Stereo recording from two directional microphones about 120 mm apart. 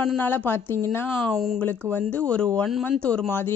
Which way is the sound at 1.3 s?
Centre (ahead or behind).